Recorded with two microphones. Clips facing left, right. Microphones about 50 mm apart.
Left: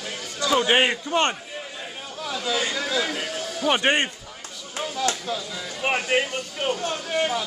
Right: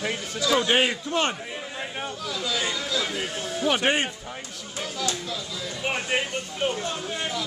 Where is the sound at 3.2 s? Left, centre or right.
Right.